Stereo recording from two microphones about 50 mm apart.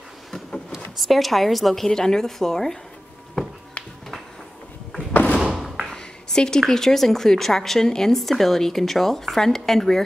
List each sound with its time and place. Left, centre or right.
0.9 s a woman's voice: centre
3.8 s music: left
5.3 s thump: centre
5.9 s a sound: centre
6.7 s a woman's voice: centre